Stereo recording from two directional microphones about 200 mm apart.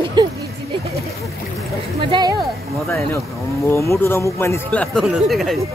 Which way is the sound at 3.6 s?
10° left (ahead or behind).